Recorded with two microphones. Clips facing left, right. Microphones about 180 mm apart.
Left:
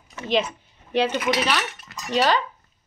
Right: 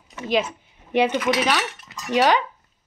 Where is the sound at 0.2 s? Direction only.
5° right (ahead or behind).